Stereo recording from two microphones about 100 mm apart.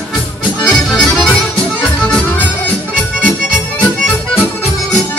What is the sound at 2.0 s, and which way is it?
Accordion, 15° left (ahead or behind).